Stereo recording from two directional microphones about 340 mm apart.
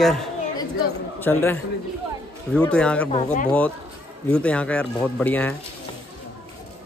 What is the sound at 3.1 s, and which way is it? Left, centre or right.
Speech, centre.